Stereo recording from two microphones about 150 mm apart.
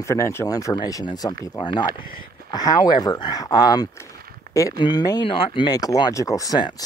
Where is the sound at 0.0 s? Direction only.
20° left (ahead or behind).